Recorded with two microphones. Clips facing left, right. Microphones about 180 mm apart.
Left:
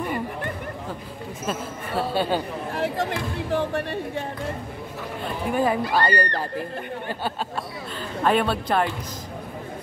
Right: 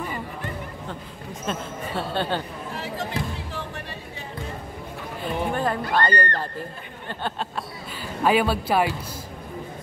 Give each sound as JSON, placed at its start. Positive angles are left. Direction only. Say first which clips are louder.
{"t": 1.4, "sound": "speech", "louder": "even", "side_deg": 5}
{"t": 2.7, "sound": "speech", "louder": "left 5 dB", "side_deg": 55}
{"t": 5.5, "sound": "speech", "louder": "left 5 dB", "side_deg": 10}
{"t": 8.2, "sound": "speech", "louder": "right 1 dB", "side_deg": -5}